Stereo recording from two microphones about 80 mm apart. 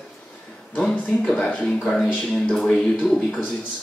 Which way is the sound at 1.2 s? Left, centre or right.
Centre.